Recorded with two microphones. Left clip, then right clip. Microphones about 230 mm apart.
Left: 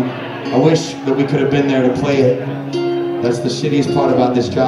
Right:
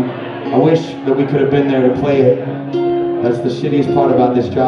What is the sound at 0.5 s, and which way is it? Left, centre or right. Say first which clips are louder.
Speech: right 1 dB; left.